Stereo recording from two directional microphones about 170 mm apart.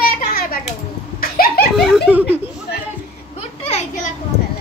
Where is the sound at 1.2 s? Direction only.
60° left (ahead or behind).